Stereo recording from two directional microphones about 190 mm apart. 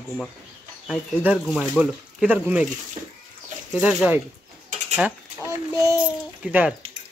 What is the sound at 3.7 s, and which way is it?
Speech, 5° right (ahead or behind).